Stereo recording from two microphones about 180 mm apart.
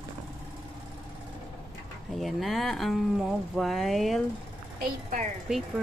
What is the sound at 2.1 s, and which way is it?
Speech, centre (ahead or behind).